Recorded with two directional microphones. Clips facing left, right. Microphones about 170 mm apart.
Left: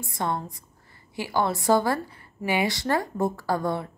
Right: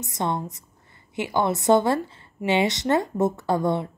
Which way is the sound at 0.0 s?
20° right (ahead or behind).